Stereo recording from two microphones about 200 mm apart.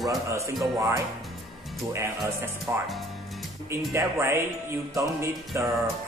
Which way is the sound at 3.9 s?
15° right (ahead or behind).